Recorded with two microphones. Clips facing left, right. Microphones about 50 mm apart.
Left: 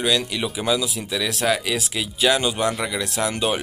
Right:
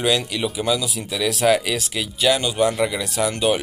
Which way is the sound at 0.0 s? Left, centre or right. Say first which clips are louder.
Right 1 dB; centre.